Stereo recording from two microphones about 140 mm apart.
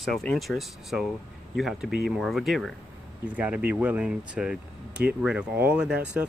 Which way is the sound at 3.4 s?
10° right (ahead or behind).